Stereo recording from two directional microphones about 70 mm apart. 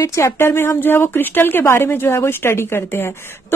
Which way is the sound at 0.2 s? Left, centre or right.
Left.